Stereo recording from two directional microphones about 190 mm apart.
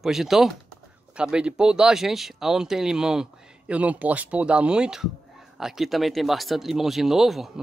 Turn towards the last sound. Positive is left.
turn(degrees=0)  # may be behind; listen again after turning